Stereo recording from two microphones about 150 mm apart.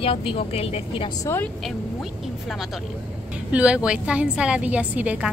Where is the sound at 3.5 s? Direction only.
5° right (ahead or behind).